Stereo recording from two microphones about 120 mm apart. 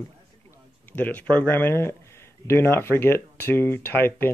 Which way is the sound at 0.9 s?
15° left (ahead or behind).